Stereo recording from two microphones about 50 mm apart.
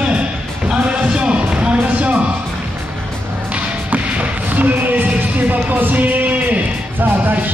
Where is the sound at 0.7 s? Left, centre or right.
Centre.